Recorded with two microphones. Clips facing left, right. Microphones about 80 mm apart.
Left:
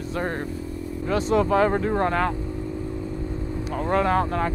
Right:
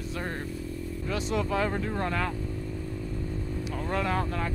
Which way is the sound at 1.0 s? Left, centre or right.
Left.